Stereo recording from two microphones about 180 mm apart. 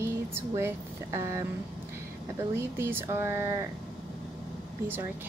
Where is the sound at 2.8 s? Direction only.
15° right (ahead or behind).